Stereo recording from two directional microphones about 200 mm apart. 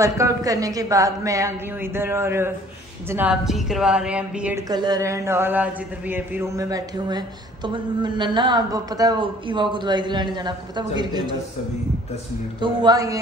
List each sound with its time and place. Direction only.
0.0 s a woman's voice: 15° right (ahead or behind)
4.6 s speech: 20° right (ahead or behind)
12.5 s speech: 20° right (ahead or behind)